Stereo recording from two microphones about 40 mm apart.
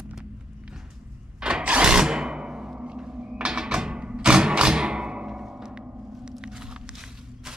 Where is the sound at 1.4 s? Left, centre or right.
Right.